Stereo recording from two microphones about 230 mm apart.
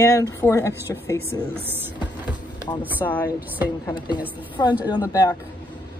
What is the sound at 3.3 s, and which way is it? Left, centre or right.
Speech, centre.